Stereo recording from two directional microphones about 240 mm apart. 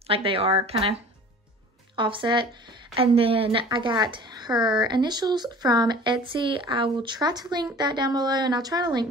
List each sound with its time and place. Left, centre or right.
0.0 s speech: right
2.0 s a woman's voice: right